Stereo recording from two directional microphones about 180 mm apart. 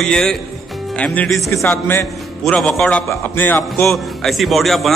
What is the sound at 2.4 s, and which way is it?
A man's voice, centre (ahead or behind).